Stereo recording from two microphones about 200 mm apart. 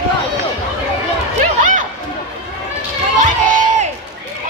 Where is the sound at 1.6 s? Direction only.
40° right (ahead or behind).